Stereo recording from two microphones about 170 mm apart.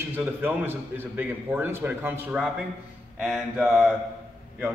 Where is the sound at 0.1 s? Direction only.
10° right (ahead or behind).